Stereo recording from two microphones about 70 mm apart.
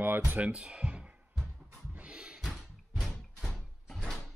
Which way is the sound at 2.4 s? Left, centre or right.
Centre.